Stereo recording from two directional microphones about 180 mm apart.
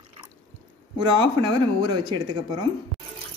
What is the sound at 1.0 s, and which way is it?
Speech, 25° right (ahead or behind).